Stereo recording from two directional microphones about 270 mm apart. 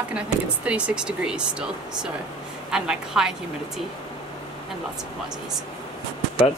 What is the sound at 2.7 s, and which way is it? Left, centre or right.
A woman's voice, centre.